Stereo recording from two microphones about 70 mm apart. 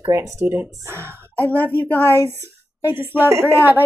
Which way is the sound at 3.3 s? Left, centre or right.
Right.